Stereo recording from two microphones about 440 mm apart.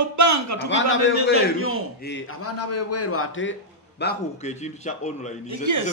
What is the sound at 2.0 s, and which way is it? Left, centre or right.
A man's voice, left.